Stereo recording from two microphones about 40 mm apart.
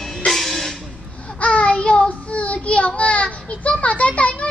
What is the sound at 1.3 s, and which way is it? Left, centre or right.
Child singing, left.